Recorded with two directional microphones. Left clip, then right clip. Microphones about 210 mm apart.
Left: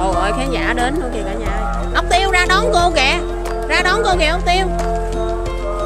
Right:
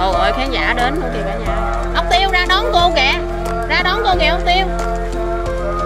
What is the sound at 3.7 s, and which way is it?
Speech, 20° left (ahead or behind).